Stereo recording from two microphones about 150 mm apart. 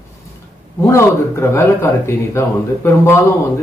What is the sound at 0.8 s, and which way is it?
Speech, 20° left (ahead or behind).